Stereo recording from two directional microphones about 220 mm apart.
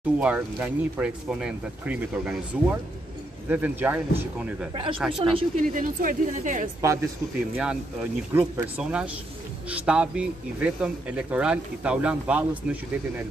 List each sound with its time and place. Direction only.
0.2 s speech: 5° right (ahead or behind)
5.7 s speech: 35° right (ahead or behind)
6.8 s speech: 10° right (ahead or behind)